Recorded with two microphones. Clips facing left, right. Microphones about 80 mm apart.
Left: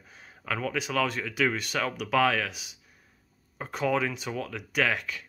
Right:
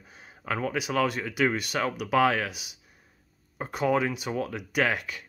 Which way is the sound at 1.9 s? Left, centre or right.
Centre.